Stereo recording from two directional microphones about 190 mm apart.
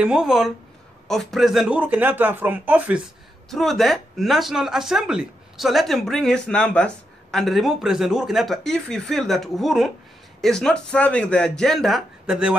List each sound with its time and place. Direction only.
0.0 s a man's voice: 5° right (ahead or behind)
3.4 s speech: centre (ahead or behind)